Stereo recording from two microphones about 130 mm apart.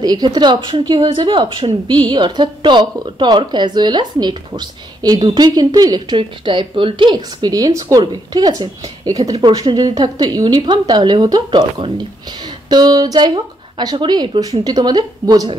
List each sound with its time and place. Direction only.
0.0 s a woman's voice: 30° right (ahead or behind)